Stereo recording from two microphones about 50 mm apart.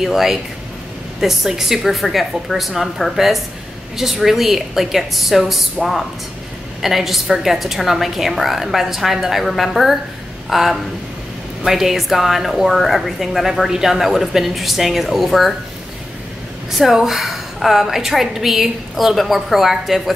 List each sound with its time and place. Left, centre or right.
0.0 s a woman's voice: centre
16.7 s a woman's voice: centre